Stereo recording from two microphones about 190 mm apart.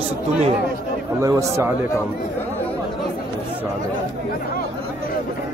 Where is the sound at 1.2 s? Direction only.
15° right (ahead or behind).